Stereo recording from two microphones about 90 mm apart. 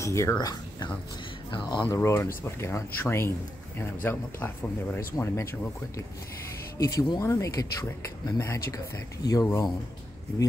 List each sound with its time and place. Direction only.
0.0 s speech: 35° left (ahead or behind)
0.4 s speech: 45° left (ahead or behind)
1.5 s speech: 55° left (ahead or behind)
1.9 s speech: 30° left (ahead or behind)
7.2 s speech: 35° left (ahead or behind)
8.3 s speech: 25° left (ahead or behind)
8.7 s speech: 40° left (ahead or behind)